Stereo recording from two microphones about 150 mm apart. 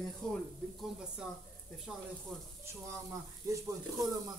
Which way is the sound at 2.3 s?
Centre (ahead or behind).